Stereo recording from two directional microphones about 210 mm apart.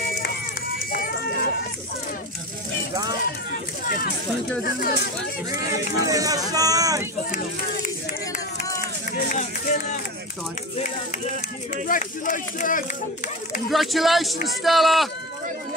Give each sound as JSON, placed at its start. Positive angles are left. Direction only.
{"t": 0.9, "sound": "a sound", "side_deg": 45}
{"t": 2.9, "sound": "a sound", "side_deg": -20}
{"t": 4.6, "sound": "speech", "side_deg": 45}
{"t": 5.7, "sound": "speech", "side_deg": -15}
{"t": 9.3, "sound": "music", "side_deg": 35}
{"t": 11.9, "sound": "speech", "side_deg": 40}
{"t": 13.7, "sound": "speech", "side_deg": 0}